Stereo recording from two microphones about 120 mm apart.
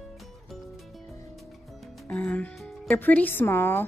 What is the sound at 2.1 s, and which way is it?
Speech, 15° left (ahead or behind).